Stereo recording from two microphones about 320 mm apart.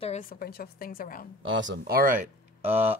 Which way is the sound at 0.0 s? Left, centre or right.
Left.